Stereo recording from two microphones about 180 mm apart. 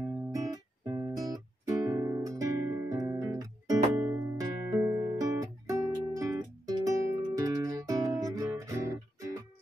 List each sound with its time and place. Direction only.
0.3 s music: 20° right (ahead or behind)